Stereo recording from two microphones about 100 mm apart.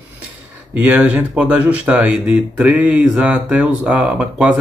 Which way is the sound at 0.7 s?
15° right (ahead or behind).